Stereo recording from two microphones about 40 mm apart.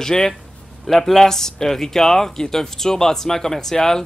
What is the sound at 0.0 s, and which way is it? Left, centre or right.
Speech, centre.